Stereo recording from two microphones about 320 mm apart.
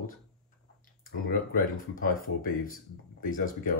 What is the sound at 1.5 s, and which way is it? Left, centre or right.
Speech, left.